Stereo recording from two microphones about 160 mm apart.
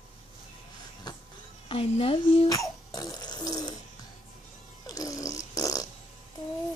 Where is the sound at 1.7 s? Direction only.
35° left (ahead or behind).